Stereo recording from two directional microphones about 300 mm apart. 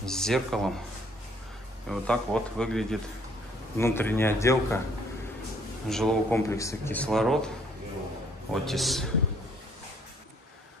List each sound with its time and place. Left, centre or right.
0.0 s speech: centre
1.9 s a man's voice: centre
5.9 s speech: centre
8.6 s speech: centre